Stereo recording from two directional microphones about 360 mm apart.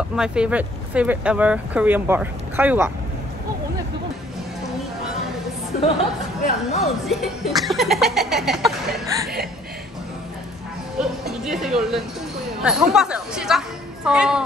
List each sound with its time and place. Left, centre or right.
0.1 s speech: centre
5.7 s speech: left
6.8 s speech: centre
11.0 s speech: centre